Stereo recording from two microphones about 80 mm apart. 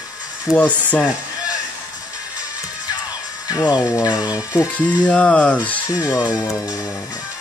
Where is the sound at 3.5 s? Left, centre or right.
Left.